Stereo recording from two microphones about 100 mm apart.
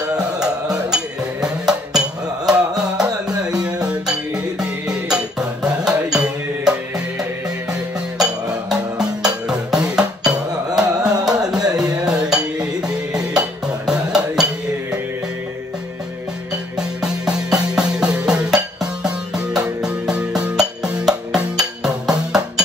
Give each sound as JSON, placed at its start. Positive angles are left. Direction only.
{"t": 0.9, "sound": "music", "side_deg": -5}
{"t": 8.2, "sound": "music", "side_deg": -5}
{"t": 11.3, "sound": "music", "side_deg": -40}
{"t": 12.1, "sound": "music", "side_deg": -10}
{"t": 17.0, "sound": "music", "side_deg": -5}